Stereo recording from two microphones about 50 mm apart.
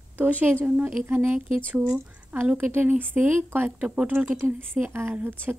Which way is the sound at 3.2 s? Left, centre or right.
Right.